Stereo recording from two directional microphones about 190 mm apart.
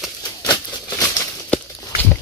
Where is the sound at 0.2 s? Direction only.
20° left (ahead or behind).